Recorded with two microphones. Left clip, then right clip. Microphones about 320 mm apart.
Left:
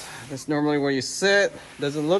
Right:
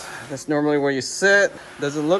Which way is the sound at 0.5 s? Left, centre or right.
Centre.